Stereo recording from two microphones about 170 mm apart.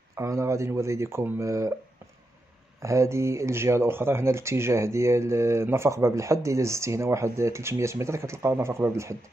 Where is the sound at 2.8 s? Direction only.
15° right (ahead or behind).